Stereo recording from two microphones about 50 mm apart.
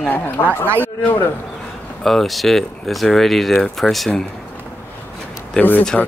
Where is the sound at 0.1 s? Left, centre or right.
Left.